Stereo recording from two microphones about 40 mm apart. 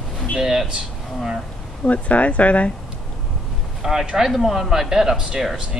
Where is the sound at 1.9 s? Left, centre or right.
Left.